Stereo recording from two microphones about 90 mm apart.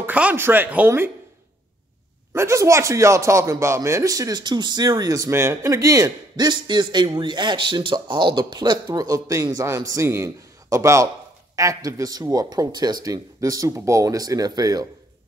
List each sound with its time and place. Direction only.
0.0 s speech: 15° right (ahead or behind)
2.3 s speech: 35° right (ahead or behind)
5.3 s speech: 30° right (ahead or behind)
6.3 s speech: 55° right (ahead or behind)